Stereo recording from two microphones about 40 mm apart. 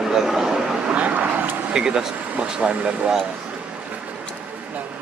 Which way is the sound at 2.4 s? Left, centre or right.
Right.